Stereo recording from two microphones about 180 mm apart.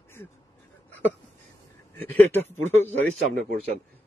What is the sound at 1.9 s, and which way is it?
Speech, 10° left (ahead or behind).